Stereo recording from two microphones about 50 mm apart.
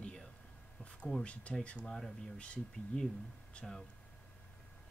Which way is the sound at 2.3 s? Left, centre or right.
Left.